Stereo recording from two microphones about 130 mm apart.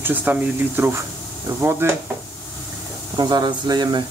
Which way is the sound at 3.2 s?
35° right (ahead or behind).